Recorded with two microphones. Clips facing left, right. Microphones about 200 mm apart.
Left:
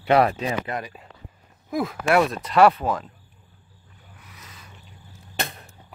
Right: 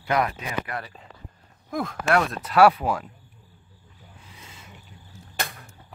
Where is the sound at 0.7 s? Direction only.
15° left (ahead or behind).